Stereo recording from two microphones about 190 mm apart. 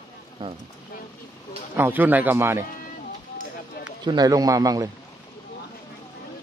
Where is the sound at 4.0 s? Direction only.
20° right (ahead or behind).